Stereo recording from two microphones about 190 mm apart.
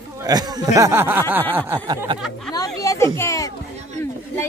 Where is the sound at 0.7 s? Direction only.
15° right (ahead or behind).